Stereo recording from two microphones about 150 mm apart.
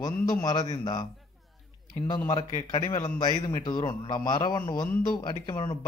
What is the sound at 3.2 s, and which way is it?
A man's voice, 30° left (ahead or behind).